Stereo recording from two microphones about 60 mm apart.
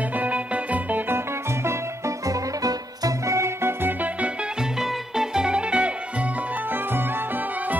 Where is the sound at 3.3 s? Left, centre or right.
Right.